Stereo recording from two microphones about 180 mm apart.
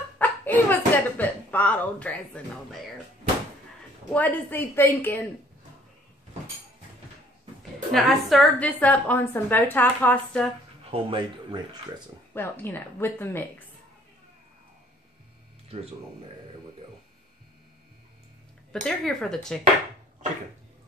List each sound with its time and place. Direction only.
0.2 s a woman's voice: 10° left (ahead or behind)
4.1 s a woman's voice: 10° left (ahead or behind)
7.9 s a woman's voice: centre (ahead or behind)
10.9 s speech: 30° right (ahead or behind)
12.4 s a woman's voice: 10° left (ahead or behind)
18.7 s speech: 5° left (ahead or behind)